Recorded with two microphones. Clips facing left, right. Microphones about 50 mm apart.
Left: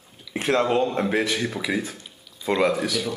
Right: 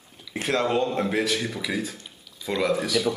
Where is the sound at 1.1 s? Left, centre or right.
Centre.